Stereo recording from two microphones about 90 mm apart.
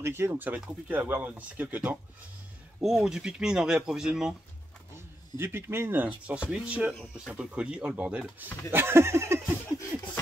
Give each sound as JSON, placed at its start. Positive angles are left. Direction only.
{"t": 0.0, "sound": "speech", "side_deg": -25}
{"t": 2.8, "sound": "speech", "side_deg": 0}
{"t": 5.4, "sound": "speech", "side_deg": -25}
{"t": 8.7, "sound": "speech", "side_deg": -30}